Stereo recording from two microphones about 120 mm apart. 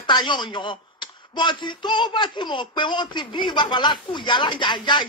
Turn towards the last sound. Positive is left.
turn(degrees=40)  # may be behind; listen again after turning